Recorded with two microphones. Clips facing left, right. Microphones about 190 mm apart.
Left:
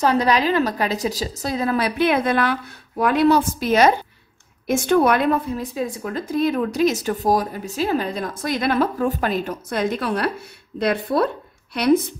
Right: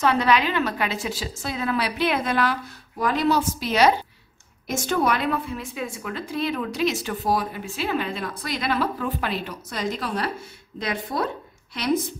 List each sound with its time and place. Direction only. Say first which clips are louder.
0.0 s a woman's voice: left 3 dB; 35° left (ahead or behind); by 12.0 s 65° left (ahead or behind)